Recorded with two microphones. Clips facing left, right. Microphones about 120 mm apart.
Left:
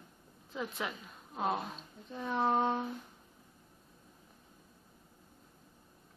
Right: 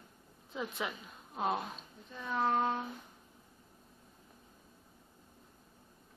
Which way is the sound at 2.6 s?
Centre (ahead or behind).